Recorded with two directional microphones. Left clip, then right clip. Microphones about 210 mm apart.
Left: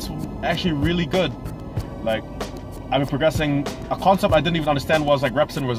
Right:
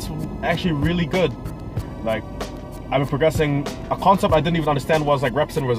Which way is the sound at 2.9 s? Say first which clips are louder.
Right 1 dB; 15° left (ahead or behind).